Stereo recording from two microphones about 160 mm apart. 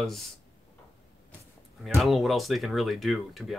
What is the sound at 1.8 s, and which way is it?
Speech, centre (ahead or behind).